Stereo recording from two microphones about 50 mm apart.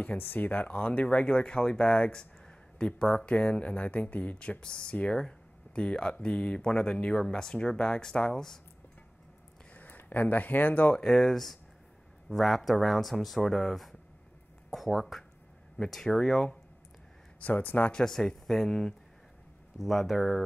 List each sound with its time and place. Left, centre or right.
0.0 s speech: left; by 3.3 s centre
3.3 s speech: left
9.8 s speech: left
11.0 s speech: centre
17.4 s speech: left
17.9 s speech: centre